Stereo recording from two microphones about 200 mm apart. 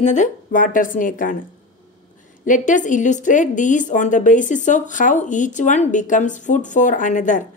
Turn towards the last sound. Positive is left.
turn(degrees=40)  # may be behind; listen again after turning